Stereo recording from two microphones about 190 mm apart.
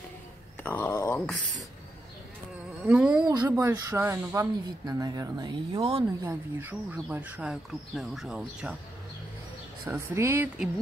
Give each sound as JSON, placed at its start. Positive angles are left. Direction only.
{"t": 0.7, "sound": "a sound", "side_deg": 10}
{"t": 2.8, "sound": "speech", "side_deg": -5}
{"t": 3.2, "sound": "speech", "side_deg": -20}
{"t": 6.2, "sound": "speech", "side_deg": -10}
{"t": 9.8, "sound": "speech", "side_deg": -15}